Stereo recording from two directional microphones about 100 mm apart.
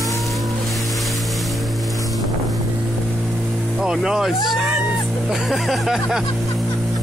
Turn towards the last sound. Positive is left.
turn(degrees=0)  # may be behind; listen again after turning